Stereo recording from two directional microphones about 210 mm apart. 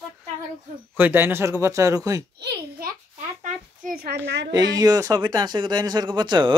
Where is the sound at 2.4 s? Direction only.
50° right (ahead or behind).